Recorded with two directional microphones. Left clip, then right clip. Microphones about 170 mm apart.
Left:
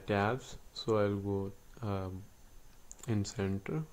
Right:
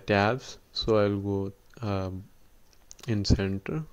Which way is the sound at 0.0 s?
35° right (ahead or behind).